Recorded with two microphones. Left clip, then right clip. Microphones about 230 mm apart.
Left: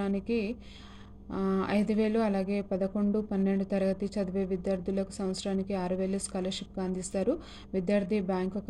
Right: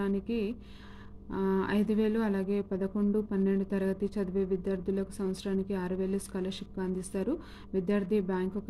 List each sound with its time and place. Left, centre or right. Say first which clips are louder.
0.0 s speech: left 1 dB; centre